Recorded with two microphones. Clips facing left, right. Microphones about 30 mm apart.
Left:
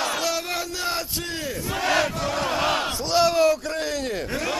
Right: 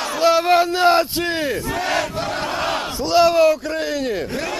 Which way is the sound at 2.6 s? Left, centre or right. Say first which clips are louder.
Right 1 dB; centre.